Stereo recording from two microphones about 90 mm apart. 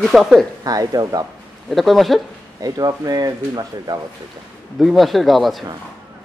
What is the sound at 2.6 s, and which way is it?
Speech, 45° right (ahead or behind).